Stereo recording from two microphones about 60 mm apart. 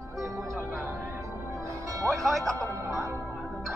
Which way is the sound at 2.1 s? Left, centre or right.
Centre.